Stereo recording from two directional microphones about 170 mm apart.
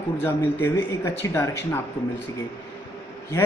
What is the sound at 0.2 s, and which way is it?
A man's voice, 15° left (ahead or behind).